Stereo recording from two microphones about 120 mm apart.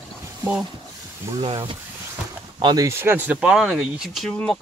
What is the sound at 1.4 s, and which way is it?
Speech, 50° right (ahead or behind).